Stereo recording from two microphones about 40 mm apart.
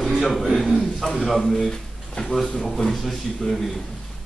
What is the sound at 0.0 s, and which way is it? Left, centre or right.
A man's voice, centre.